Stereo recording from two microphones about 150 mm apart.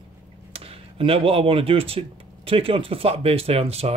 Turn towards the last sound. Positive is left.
turn(degrees=-40)  # may be behind; listen again after turning